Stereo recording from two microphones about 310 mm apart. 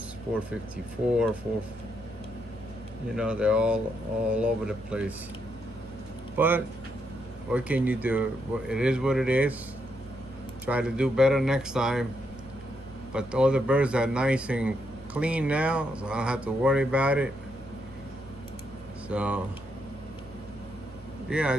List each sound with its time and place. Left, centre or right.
3.2 s speech: centre
6.3 s speech: centre
10.6 s speech: centre
13.1 s speech: centre
19.0 s speech: centre
21.3 s speech: centre